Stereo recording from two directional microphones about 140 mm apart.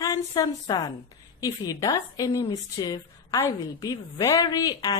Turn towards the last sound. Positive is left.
turn(degrees=25)  # may be behind; listen again after turning